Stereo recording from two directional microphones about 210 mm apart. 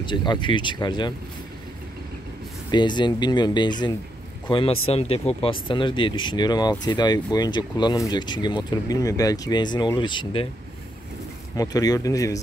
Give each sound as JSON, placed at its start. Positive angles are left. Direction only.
{"t": 0.0, "sound": "speech", "side_deg": 20}
{"t": 2.7, "sound": "speech", "side_deg": 20}
{"t": 11.5, "sound": "speech", "side_deg": 15}